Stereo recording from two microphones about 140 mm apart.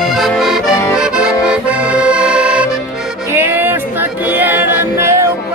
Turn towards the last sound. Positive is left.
turn(degrees=-20)  # may be behind; listen again after turning